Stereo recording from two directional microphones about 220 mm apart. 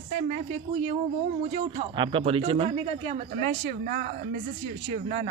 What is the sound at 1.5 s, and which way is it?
Speech, 25° right (ahead or behind).